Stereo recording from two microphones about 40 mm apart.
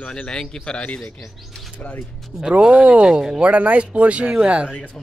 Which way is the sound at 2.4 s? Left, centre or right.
Right.